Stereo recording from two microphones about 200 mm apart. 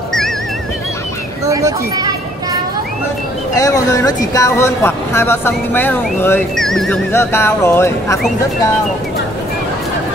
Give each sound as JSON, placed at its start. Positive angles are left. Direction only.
{"t": 1.4, "sound": "speech", "side_deg": -15}
{"t": 3.5, "sound": "speech", "side_deg": 15}